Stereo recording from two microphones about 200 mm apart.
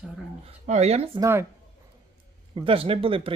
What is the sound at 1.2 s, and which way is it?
Speech, 10° right (ahead or behind).